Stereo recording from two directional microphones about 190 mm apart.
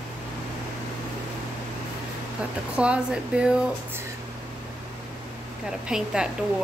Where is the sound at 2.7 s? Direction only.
5° right (ahead or behind).